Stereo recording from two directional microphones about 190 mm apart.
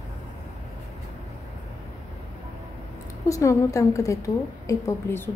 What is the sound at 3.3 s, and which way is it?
A woman's voice, 15° left (ahead or behind).